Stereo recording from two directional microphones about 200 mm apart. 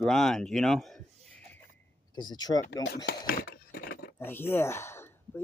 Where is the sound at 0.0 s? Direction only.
Centre (ahead or behind).